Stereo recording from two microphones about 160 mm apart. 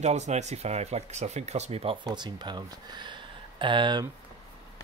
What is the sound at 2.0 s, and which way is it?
Speech, 25° right (ahead or behind).